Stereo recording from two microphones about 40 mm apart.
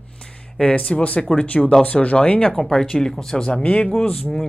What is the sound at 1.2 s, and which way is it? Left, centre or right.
Speech, centre.